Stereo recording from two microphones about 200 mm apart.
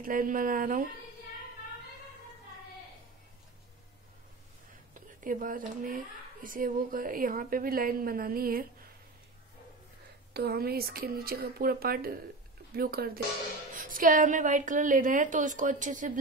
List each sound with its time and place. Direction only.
0.0 s speech: 45° right (ahead or behind)
5.2 s speech: 45° right (ahead or behind)
10.3 s a woman's voice: 50° right (ahead or behind)